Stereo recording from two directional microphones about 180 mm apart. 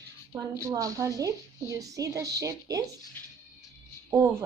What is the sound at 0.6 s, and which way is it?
A woman's voice, 20° right (ahead or behind).